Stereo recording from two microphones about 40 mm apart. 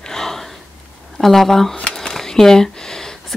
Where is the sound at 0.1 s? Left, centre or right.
Centre.